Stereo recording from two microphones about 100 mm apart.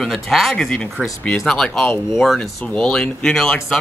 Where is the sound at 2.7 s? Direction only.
10° left (ahead or behind).